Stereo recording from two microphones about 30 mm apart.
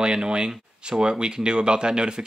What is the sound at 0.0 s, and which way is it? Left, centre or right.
Speech, right.